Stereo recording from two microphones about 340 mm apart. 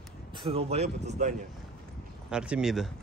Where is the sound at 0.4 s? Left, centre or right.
Centre.